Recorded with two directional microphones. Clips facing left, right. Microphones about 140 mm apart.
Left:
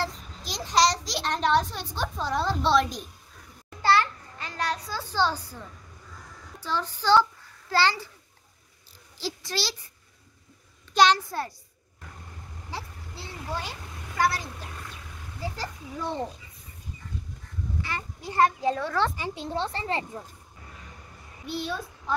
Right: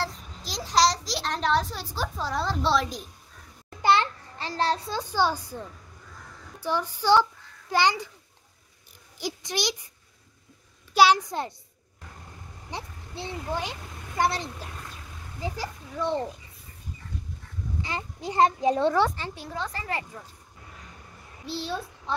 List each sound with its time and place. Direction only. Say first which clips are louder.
0.0 s a child's voice: left 1 dB; centre (ahead or behind)
3.8 s a sound: even; 20° right (ahead or behind)
4.5 s a child's voice: right 4 dB; 30° right (ahead or behind)
5.0 s a child's voice: even; 10° right (ahead or behind)
6.6 s a child's voice: right 2 dB; 15° right (ahead or behind)
9.2 s a child's voice: right 2 dB; 20° right (ahead or behind)
11.0 s a child's voice: right 1 dB; 15° right (ahead or behind)
12.7 s a child's voice: right 2 dB; 20° right (ahead or behind)
17.8 s a child's voice: right 2 dB; 20° right (ahead or behind)
19.1 s speech: left 3 dB; 15° left (ahead or behind)
19.4 s a child's voice: left 4 dB; 30° left (ahead or behind)
21.5 s a child's voice: even; 30° right (ahead or behind)